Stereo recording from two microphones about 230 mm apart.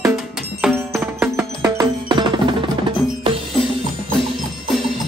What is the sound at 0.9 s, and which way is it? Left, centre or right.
Music, centre.